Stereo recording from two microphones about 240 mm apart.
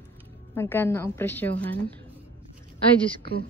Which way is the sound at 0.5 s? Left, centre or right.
Centre.